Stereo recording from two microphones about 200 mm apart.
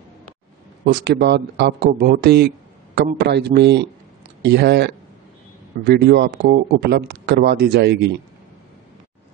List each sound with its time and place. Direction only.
0.8 s speech: 55° right (ahead or behind)